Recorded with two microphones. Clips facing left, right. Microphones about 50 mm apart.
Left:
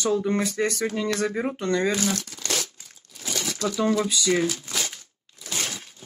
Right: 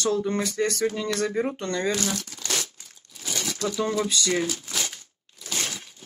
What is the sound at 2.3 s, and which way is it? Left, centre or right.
Crumpling, centre.